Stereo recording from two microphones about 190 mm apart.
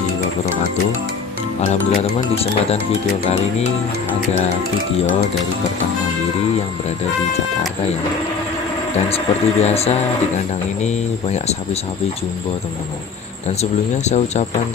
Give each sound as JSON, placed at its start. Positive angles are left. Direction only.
{"t": 1.6, "sound": "speech", "side_deg": 35}
{"t": 8.9, "sound": "speech", "side_deg": 35}
{"t": 13.6, "sound": "speech", "side_deg": 35}